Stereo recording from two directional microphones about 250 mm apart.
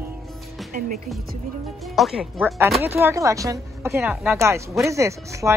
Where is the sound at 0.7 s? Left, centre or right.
Right.